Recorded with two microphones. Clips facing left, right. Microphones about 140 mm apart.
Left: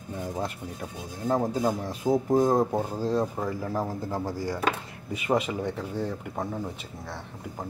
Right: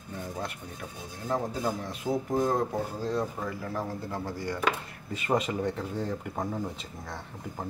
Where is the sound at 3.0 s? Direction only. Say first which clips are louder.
Left 4 dB; 35° left (ahead or behind).